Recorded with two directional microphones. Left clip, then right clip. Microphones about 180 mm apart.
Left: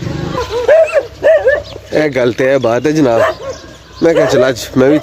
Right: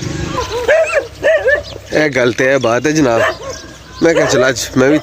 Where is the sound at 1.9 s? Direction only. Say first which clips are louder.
Even; 5° left (ahead or behind).